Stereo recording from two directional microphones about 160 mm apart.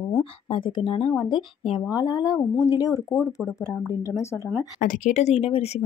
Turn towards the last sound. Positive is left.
turn(degrees=40)  # may be behind; listen again after turning